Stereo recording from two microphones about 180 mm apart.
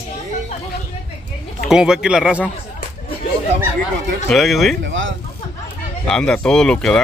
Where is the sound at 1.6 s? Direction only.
5° right (ahead or behind).